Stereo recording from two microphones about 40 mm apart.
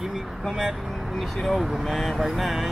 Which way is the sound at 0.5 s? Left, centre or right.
Centre.